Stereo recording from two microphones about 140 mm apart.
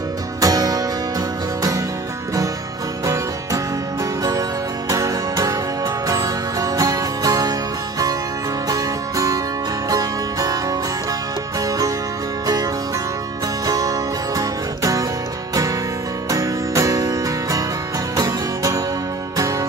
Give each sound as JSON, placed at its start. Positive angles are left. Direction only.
{"t": 0.4, "sound": "music", "side_deg": -25}
{"t": 4.2, "sound": "music", "side_deg": -25}
{"t": 8.6, "sound": "music", "side_deg": -25}
{"t": 13.7, "sound": "music", "side_deg": -25}
{"t": 16.3, "sound": "music", "side_deg": -25}